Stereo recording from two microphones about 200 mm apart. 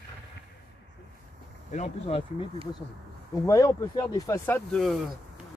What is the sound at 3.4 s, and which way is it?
Speech, 15° left (ahead or behind).